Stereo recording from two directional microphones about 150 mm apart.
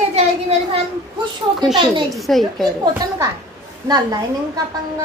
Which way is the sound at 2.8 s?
25° right (ahead or behind).